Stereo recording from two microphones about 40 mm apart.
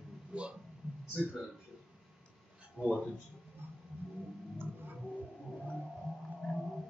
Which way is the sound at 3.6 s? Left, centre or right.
Right.